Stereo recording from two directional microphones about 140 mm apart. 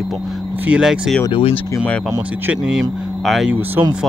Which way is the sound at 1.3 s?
40° left (ahead or behind).